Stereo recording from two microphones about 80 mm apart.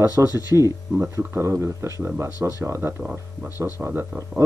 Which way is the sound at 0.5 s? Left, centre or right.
Centre.